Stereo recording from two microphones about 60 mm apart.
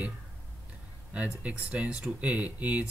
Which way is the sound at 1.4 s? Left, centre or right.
Right.